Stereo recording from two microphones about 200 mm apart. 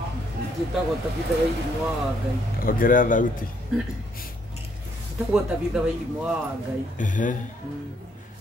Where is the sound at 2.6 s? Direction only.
45° left (ahead or behind).